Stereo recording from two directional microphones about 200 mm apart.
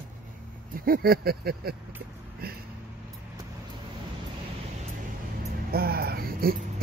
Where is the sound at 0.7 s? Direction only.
50° right (ahead or behind).